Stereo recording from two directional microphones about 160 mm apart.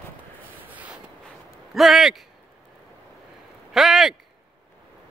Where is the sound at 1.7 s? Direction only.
Centre (ahead or behind).